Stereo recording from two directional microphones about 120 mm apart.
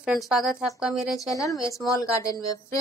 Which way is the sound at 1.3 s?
30° left (ahead or behind).